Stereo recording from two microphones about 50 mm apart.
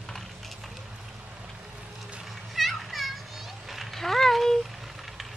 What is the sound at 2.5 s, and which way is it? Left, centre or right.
Children playing, centre.